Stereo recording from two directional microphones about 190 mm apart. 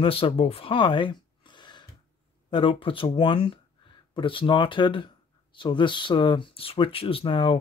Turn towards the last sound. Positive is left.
turn(degrees=25)  # may be behind; listen again after turning